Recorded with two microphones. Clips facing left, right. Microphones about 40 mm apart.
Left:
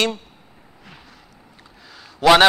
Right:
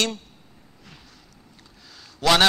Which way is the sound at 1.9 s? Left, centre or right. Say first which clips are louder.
Left 6 dB; centre.